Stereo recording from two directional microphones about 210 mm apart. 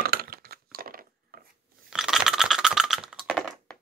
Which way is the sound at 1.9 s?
Centre (ahead or behind).